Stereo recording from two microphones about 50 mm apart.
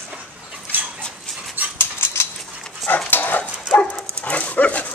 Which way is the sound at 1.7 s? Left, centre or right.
Left.